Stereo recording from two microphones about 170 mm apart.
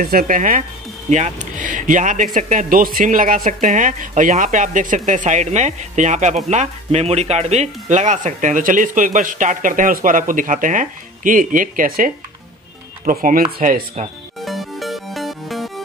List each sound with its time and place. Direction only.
0.0 s speech: 55° right (ahead or behind)
14.4 s music: centre (ahead or behind)